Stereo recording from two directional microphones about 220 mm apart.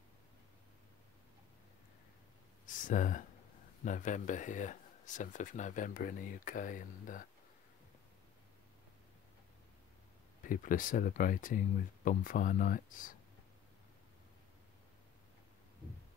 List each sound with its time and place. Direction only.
2.6 s a sound: 35° left (ahead or behind)
3.8 s speech: 35° left (ahead or behind)
10.4 s speech: 40° left (ahead or behind)